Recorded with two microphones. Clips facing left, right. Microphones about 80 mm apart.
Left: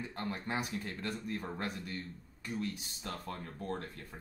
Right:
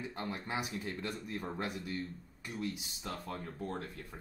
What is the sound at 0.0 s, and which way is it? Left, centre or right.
Speech, centre.